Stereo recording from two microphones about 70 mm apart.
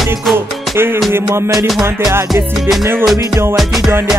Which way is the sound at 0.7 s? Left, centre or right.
Right.